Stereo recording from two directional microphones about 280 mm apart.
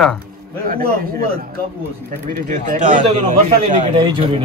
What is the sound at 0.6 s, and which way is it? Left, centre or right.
Speech, right.